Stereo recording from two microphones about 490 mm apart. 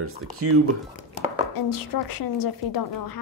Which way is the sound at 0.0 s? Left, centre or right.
Right.